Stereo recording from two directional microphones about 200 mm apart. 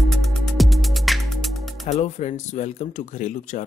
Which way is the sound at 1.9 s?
35° left (ahead or behind).